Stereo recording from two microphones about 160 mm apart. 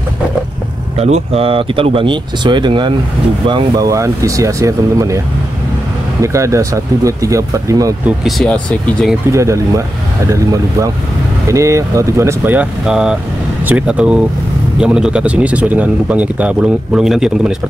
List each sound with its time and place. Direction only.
0.9 s speech: 40° right (ahead or behind); by 5.2 s 20° right (ahead or behind)
6.2 s speech: 20° right (ahead or behind)
8.2 s speech: centre (ahead or behind)
9.3 s speech: 20° right (ahead or behind); by 17.6 s 5° right (ahead or behind)